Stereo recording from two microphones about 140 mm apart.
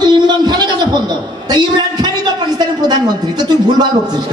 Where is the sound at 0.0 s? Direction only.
30° right (ahead or behind).